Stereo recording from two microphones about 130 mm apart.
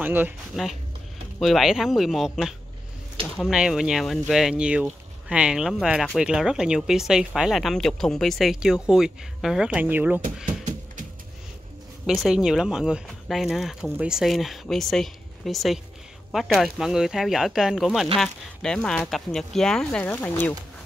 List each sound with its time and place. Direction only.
0.0 s speech: 15° right (ahead or behind)
0.6 s speech: centre (ahead or behind)
10.2 s music: 80° right
12.1 s speech: 5° right (ahead or behind)
20.1 s speech: 15° left (ahead or behind)